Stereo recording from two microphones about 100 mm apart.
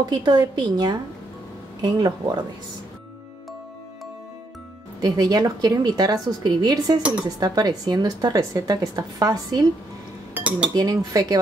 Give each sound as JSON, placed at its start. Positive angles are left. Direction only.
{"t": 0.0, "sound": "a woman's voice", "side_deg": -45}
{"t": 5.0, "sound": "speech", "side_deg": -40}
{"t": 10.3, "sound": "cutlery", "side_deg": -15}
{"t": 10.7, "sound": "speech", "side_deg": -40}